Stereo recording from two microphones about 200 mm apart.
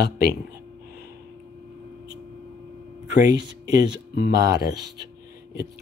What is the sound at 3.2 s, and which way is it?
Speech, 20° right (ahead or behind).